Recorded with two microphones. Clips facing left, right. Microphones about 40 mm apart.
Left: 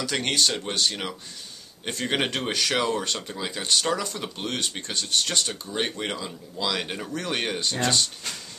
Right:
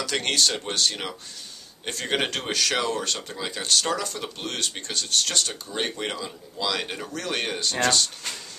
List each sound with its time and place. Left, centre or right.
0.1 s speech: centre
1.9 s speech: centre
5.5 s speech: centre